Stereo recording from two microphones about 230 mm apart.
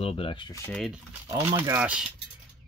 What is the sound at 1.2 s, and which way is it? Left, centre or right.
Speech, centre.